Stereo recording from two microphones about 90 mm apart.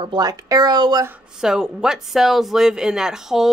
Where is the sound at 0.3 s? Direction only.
40° right (ahead or behind).